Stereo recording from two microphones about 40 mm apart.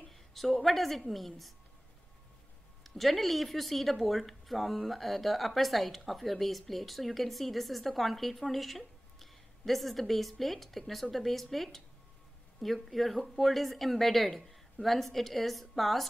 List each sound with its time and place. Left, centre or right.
0.1 s a woman's voice: centre
2.8 s speech: centre